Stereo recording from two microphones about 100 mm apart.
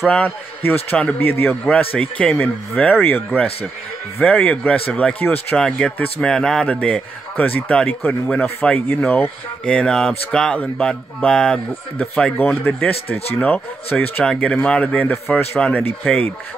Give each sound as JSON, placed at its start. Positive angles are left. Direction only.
{"t": 0.8, "sound": "a man's voice", "side_deg": 20}
{"t": 13.9, "sound": "a man's voice", "side_deg": 15}